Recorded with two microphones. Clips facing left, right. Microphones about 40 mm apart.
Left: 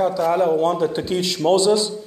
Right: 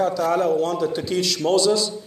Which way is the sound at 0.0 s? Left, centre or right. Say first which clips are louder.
Left 2 dB; centre.